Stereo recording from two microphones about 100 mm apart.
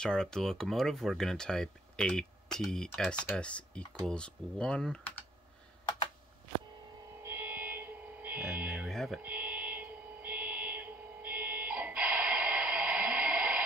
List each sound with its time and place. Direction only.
0.0 s speech: 5° left (ahead or behind)
7.2 s fire alarm: 20° right (ahead or behind)
8.5 s a sound: 15° right (ahead or behind)
9.2 s fire alarm: 15° right (ahead or behind)